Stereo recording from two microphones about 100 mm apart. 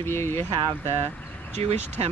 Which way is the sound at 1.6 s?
90° right.